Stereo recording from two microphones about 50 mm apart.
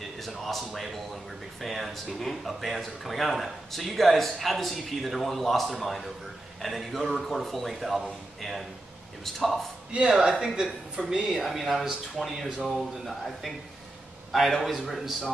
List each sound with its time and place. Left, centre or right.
0.2 s speech: centre
9.9 s speech: right
10.2 s speech: centre